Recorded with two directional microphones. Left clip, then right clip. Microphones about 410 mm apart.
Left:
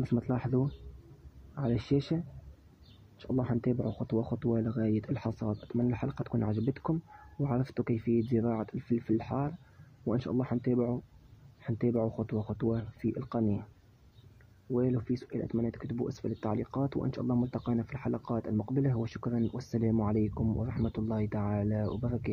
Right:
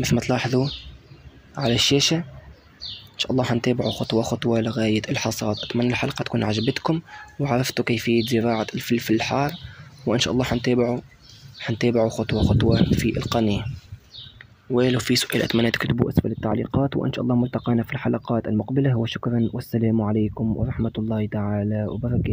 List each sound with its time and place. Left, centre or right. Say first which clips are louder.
0.0 s speech: right 11 dB; left
14.7 s speech: right 11 dB; left